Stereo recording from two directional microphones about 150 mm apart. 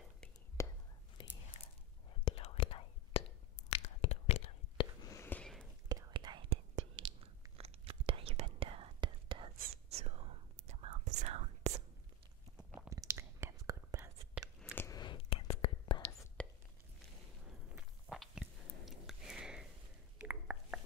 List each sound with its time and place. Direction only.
0.6 s whispering: 20° left (ahead or behind)
1.2 s whispering: 35° left (ahead or behind)
5.0 s a sound: 15° left (ahead or behind)
5.9 s whispering: 25° right (ahead or behind)
7.5 s whispering: 40° right (ahead or behind)
9.8 s whispering: 45° right (ahead or behind)
12.5 s chewing: 5° right (ahead or behind)
12.9 s whispering: 20° right (ahead or behind)
14.8 s whispering: 25° left (ahead or behind)
16.4 s a sound: 10° left (ahead or behind)
17.7 s a sound: 5° right (ahead or behind)
20.2 s whispering: 10° right (ahead or behind)